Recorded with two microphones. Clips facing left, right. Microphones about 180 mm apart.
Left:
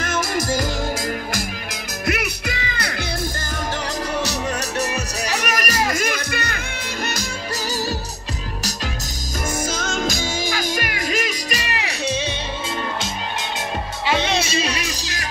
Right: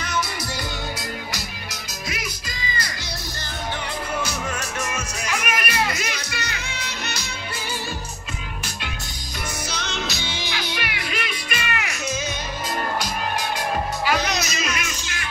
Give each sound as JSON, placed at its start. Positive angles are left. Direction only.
{"t": 0.0, "sound": "music", "side_deg": 45}
{"t": 2.0, "sound": "music", "side_deg": 65}
{"t": 4.3, "sound": "music", "side_deg": 40}
{"t": 9.7, "sound": "music", "side_deg": 45}
{"t": 14.0, "sound": "music", "side_deg": 25}